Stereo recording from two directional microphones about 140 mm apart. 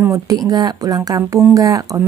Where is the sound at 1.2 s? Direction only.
15° right (ahead or behind).